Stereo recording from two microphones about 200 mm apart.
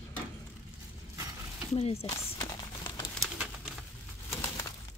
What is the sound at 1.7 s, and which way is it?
Speech, 30° left (ahead or behind).